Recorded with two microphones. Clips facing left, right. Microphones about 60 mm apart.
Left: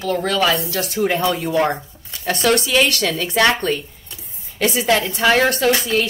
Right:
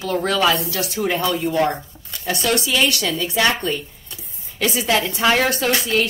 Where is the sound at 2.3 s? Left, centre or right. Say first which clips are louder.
Left 3 dB; left.